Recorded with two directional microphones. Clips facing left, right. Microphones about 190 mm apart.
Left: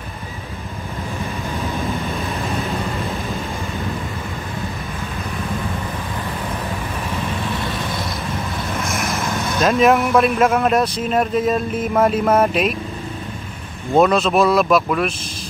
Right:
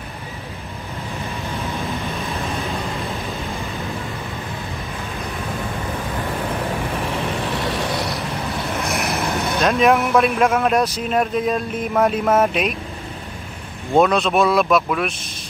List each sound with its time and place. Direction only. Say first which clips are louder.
7.9 s vehicle: right 1 dB; 70° right (ahead or behind)
9.6 s speech: left 2 dB; centre (ahead or behind)
13.9 s speech: left 1 dB; centre (ahead or behind)